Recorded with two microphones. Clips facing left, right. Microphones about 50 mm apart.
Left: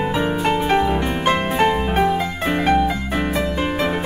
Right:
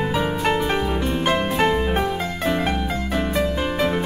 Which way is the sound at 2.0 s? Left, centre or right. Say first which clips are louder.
Left 4 dB; left.